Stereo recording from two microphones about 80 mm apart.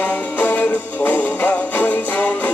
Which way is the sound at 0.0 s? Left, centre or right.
Left.